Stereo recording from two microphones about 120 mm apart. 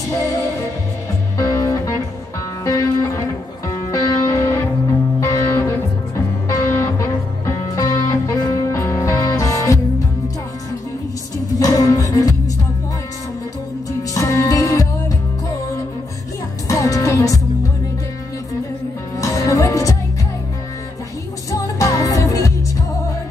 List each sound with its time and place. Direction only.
0.1 s music: 30° left (ahead or behind)
11.6 s music: 30° left (ahead or behind)
14.1 s music: 25° left (ahead or behind)
16.6 s music: 25° left (ahead or behind)
19.1 s music: 30° left (ahead or behind)
21.5 s music: 30° left (ahead or behind)